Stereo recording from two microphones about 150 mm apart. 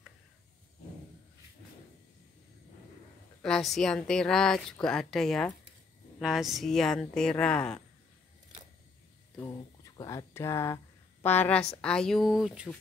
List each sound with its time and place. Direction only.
3.4 s speech: 5° left (ahead or behind)
9.4 s a woman's voice: 20° left (ahead or behind); by 12.6 s 5° right (ahead or behind)